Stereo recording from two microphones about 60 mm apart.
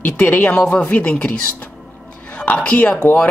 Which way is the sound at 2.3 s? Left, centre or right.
Left.